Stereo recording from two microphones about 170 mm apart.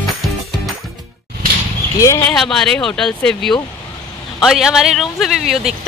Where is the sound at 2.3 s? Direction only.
5° left (ahead or behind).